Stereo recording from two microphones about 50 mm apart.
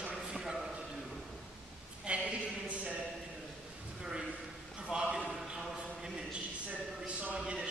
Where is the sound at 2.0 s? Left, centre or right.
Right.